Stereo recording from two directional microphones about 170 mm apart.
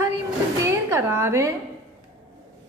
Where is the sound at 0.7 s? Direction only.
15° right (ahead or behind).